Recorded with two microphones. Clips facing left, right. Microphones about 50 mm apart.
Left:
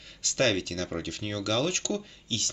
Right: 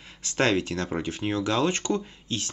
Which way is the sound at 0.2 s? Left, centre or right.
Right.